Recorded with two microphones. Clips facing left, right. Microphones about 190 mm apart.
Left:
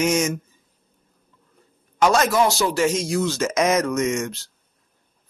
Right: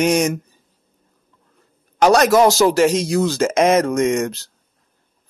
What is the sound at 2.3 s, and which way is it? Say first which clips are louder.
Speech: right 7 dB; 40° right (ahead or behind).